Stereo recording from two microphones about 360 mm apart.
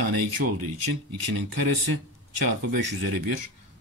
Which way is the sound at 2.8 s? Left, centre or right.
Right.